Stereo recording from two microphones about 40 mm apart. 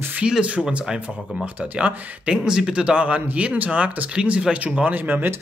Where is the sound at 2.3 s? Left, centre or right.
Centre.